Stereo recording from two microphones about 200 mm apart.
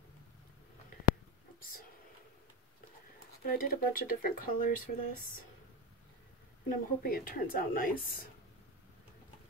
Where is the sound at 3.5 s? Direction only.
45° left (ahead or behind).